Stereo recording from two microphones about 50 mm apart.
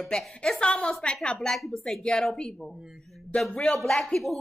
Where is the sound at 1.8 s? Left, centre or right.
Centre.